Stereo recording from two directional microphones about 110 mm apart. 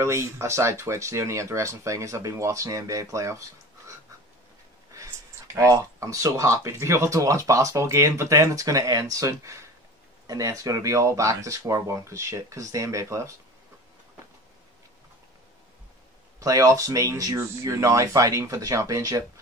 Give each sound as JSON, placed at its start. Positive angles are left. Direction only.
{"t": 0.0, "sound": "speech", "side_deg": -25}
{"t": 5.5, "sound": "speech", "side_deg": -30}
{"t": 16.3, "sound": "speech", "side_deg": -30}